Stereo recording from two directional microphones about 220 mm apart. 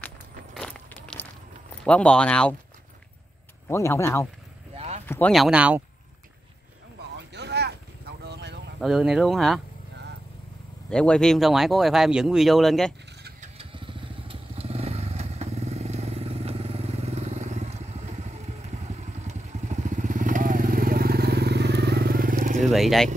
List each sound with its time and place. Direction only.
0.6 s a sound: 5° left (ahead or behind)
1.9 s speech: 5° left (ahead or behind)
3.6 s speech: 10° left (ahead or behind)
4.7 s a sound: 30° right (ahead or behind)
5.0 s speech: 5° left (ahead or behind)
7.2 s boat: 50° right (ahead or behind)
8.2 s a sound: 50° right (ahead or behind)
8.8 s speech: centre (ahead or behind)
10.9 s speech: 5° left (ahead or behind)
13.4 s motorcycle: 25° right (ahead or behind)
22.7 s vehicle: centre (ahead or behind)